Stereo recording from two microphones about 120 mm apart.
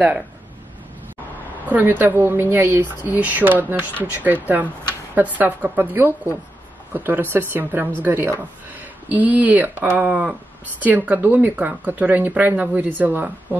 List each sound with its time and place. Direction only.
1.7 s speech: 15° right (ahead or behind)